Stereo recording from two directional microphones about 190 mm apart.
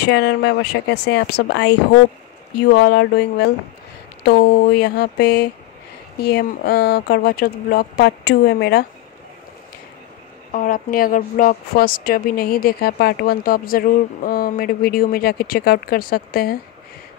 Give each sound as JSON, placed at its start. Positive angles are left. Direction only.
{"t": 0.0, "sound": "speech", "side_deg": 60}
{"t": 10.5, "sound": "a woman's voice", "side_deg": 45}